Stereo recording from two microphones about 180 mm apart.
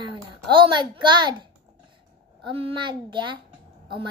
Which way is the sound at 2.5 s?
30° right (ahead or behind).